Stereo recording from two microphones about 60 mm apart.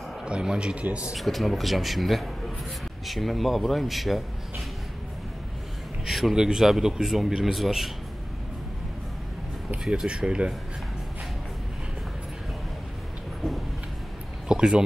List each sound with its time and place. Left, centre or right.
0.2 s a man's voice: centre
1.1 s a man's voice: centre
6.0 s a man's voice: centre
9.8 s a man's voice: centre
14.5 s a sound: centre